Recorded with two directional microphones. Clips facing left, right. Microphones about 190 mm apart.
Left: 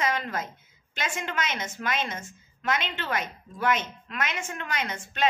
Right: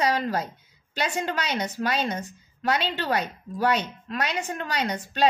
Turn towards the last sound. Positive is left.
turn(degrees=-35)  # may be behind; listen again after turning